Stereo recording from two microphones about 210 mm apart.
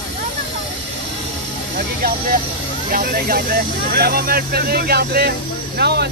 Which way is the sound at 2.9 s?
40° right (ahead or behind).